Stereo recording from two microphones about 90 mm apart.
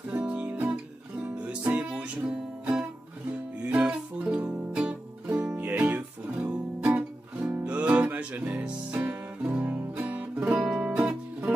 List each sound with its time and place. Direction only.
0.1 s music: 15° right (ahead or behind)